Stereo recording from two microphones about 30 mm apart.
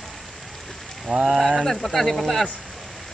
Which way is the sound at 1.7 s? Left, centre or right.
Centre.